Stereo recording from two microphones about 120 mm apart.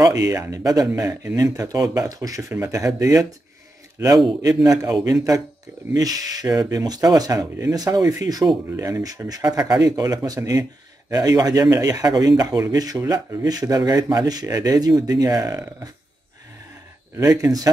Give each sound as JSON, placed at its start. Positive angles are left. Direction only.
{"t": 0.0, "sound": "speech", "side_deg": -30}
{"t": 5.0, "sound": "speech", "side_deg": -30}
{"t": 17.3, "sound": "speech", "side_deg": -30}